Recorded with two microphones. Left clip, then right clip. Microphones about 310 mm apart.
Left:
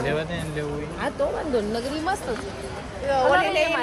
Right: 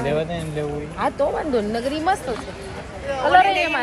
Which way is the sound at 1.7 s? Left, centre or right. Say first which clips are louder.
Right 5 dB; right.